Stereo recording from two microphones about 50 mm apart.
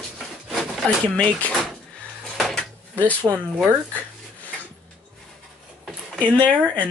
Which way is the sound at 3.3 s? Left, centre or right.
Right.